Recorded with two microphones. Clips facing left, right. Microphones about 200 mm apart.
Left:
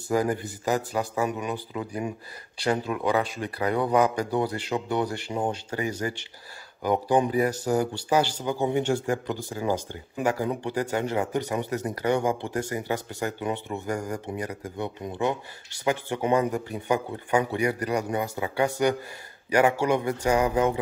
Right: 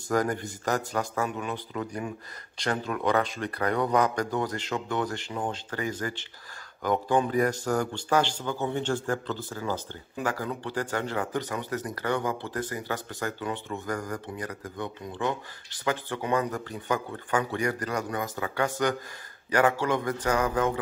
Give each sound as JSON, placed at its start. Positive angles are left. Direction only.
{"t": 0.1, "sound": "a man's voice", "side_deg": 10}